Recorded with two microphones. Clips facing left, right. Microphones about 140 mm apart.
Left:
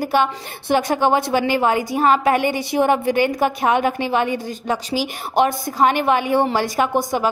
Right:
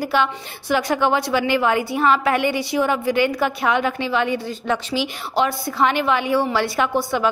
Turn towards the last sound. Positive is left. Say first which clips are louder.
# left 1 dB
turn(degrees=40)  # may be behind; listen again after turning